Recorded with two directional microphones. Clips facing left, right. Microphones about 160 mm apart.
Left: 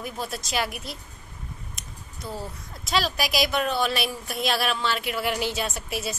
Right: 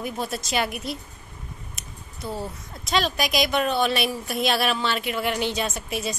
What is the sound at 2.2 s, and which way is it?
Speech, 25° right (ahead or behind).